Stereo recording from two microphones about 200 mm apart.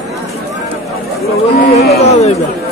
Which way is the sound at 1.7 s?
30° left (ahead or behind).